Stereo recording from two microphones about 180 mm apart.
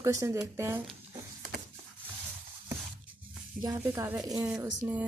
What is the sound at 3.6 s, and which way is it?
A woman's voice, 15° right (ahead or behind).